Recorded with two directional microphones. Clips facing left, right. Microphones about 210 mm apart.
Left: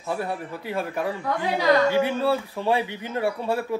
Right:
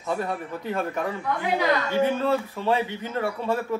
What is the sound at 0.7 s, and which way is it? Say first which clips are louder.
A man's voice: even; 10° left (ahead or behind).